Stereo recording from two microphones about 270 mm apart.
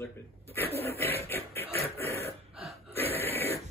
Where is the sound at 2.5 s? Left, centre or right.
Centre.